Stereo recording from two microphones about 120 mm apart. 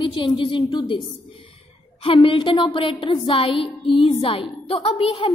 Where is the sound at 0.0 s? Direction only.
45° left (ahead or behind).